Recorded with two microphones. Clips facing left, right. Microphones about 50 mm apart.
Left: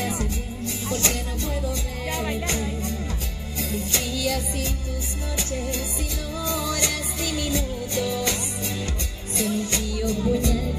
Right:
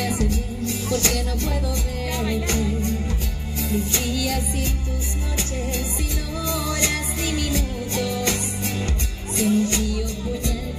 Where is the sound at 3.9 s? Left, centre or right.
Centre.